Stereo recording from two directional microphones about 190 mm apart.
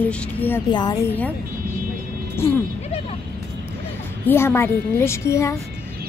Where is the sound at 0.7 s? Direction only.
20° left (ahead or behind).